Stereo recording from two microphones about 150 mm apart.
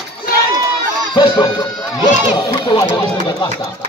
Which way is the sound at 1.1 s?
30° left (ahead or behind).